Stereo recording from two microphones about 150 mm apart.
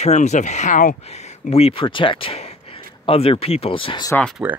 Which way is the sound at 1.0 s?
45° left (ahead or behind).